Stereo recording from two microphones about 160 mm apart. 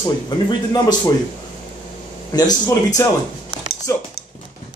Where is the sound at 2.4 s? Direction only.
25° left (ahead or behind).